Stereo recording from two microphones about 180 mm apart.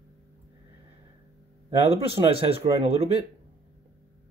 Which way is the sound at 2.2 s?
20° right (ahead or behind).